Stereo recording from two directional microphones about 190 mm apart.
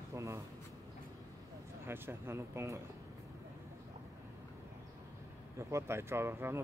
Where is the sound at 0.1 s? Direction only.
15° right (ahead or behind).